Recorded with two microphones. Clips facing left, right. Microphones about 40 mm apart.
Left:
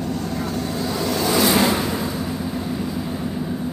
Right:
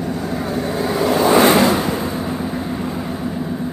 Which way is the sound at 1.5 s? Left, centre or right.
Centre.